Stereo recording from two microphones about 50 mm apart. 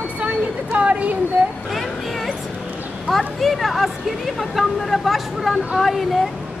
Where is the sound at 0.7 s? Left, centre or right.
Right.